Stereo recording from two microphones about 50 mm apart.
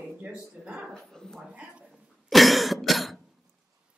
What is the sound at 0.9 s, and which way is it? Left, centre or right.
Speech, centre.